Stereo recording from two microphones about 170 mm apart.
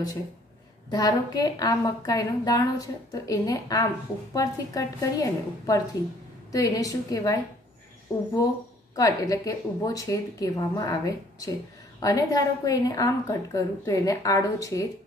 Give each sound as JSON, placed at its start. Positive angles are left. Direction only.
{"t": 0.8, "sound": "a woman's voice", "side_deg": 20}
{"t": 8.9, "sound": "a woman's voice", "side_deg": 20}